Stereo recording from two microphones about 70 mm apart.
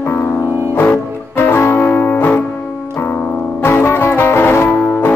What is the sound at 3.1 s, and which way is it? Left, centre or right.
Piano, left.